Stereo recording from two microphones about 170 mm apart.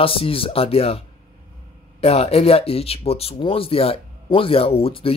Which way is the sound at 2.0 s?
35° left (ahead or behind).